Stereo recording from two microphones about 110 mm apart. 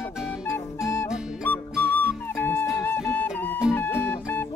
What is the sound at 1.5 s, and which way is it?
Music, 15° left (ahead or behind).